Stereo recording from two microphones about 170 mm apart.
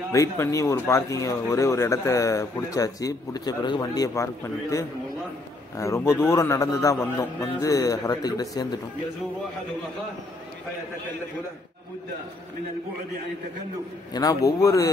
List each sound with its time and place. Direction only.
0.1 s speech: 20° left (ahead or behind)
14.1 s speech: 20° left (ahead or behind)